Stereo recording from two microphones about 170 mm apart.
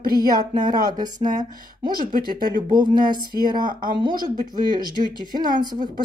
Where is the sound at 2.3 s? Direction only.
25° right (ahead or behind).